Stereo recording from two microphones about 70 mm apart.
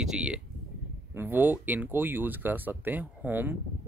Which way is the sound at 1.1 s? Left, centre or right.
Right.